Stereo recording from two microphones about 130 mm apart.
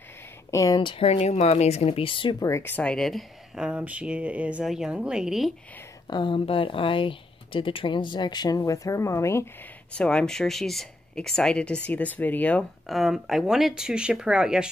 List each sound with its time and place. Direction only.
0.5 s speech: 25° left (ahead or behind)
0.7 s speech: 40° left (ahead or behind)
2.4 s speech: 20° left (ahead or behind); by 5.5 s 5° right (ahead or behind)
6.0 s speech: 35° left (ahead or behind); by 9.5 s 20° left (ahead or behind)
9.9 s speech: 10° left (ahead or behind)
12.8 s speech: centre (ahead or behind)